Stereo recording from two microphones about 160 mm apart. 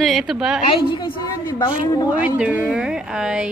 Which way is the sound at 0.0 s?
Centre (ahead or behind).